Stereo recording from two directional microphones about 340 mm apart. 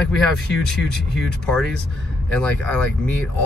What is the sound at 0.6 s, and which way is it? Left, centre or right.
Speech, centre.